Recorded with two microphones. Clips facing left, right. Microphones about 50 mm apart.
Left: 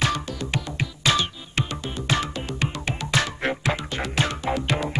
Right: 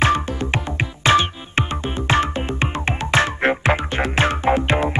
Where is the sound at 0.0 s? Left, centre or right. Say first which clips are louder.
Right 7 dB; right.